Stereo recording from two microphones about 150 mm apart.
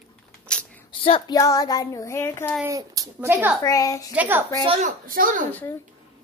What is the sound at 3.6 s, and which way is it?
Child singing, 25° left (ahead or behind).